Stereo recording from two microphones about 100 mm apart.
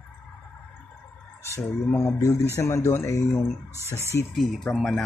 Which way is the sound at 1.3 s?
25° left (ahead or behind).